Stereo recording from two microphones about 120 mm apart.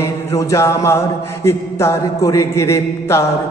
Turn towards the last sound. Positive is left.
turn(degrees=25)  # may be behind; listen again after turning